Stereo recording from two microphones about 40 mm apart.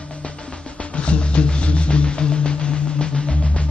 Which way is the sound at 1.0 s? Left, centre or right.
Left.